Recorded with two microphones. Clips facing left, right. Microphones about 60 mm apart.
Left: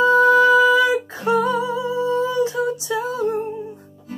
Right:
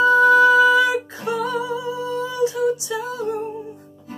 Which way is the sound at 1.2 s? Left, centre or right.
Left.